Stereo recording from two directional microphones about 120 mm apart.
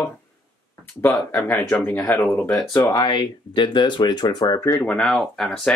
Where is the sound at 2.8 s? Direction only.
40° left (ahead or behind).